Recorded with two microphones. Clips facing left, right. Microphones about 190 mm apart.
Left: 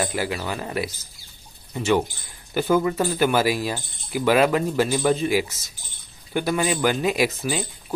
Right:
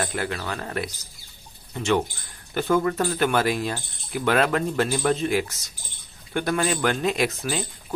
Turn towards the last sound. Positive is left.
turn(degrees=5)  # may be behind; listen again after turning